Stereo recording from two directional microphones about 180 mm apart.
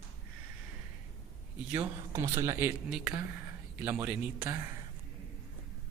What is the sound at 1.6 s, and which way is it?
Speech, 10° right (ahead or behind).